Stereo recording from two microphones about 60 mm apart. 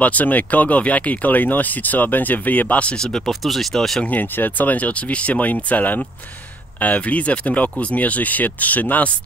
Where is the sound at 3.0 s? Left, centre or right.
Centre.